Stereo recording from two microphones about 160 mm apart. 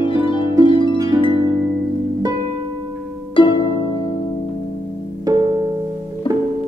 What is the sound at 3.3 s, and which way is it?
Harp, 30° left (ahead or behind).